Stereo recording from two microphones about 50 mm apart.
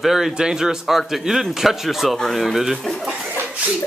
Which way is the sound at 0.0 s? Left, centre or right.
Centre.